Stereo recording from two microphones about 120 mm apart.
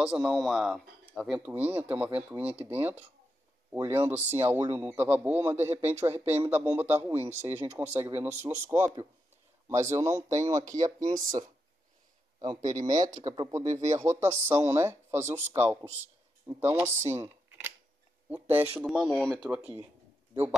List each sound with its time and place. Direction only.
0.0 s speech: 5° right (ahead or behind)
1.5 s a man's voice: 15° right (ahead or behind); by 11.1 s 30° right (ahead or behind)
12.7 s speech: 90° right
13.2 s a man's voice: 25° right (ahead or behind)
13.7 s speech: 70° right (ahead or behind)
13.9 s a man's voice: 25° right (ahead or behind)
18.8 s speech: centre (ahead or behind)
19.5 s speech: 15° right (ahead or behind)